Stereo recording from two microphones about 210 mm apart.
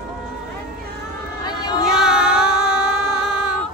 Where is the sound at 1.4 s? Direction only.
20° left (ahead or behind).